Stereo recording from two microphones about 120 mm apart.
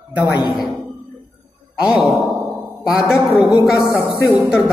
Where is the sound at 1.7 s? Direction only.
10° right (ahead or behind).